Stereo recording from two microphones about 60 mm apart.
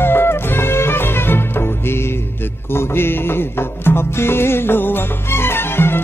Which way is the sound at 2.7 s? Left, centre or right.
Left.